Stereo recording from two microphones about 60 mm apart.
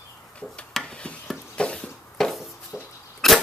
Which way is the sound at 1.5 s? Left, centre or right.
Centre.